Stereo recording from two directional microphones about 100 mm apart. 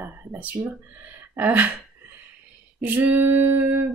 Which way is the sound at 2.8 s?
20° right (ahead or behind).